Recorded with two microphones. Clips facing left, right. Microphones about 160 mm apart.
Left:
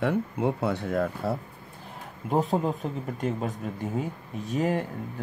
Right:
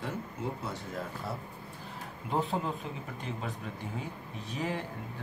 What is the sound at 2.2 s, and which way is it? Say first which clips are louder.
Speech: left 7 dB; 45° left (ahead or behind).